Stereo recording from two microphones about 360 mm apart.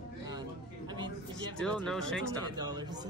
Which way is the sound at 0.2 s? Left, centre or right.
Centre.